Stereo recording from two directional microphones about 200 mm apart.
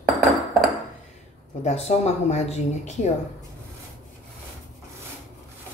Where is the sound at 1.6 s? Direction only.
35° left (ahead or behind).